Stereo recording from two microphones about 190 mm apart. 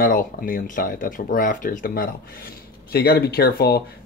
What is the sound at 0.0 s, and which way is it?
Speech, 50° left (ahead or behind).